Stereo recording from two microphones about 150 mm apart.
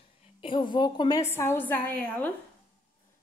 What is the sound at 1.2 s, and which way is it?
A woman's voice, 15° left (ahead or behind).